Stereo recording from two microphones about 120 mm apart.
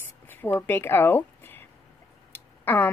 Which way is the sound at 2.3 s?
15° left (ahead or behind).